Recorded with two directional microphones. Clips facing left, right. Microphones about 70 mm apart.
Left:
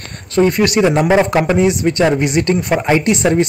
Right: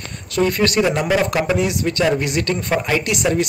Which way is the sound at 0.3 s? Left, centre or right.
Centre.